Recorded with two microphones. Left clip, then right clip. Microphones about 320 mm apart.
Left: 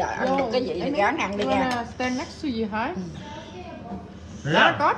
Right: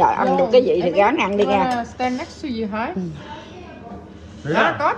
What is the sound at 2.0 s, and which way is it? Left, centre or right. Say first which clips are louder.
Speech: right 4 dB; right.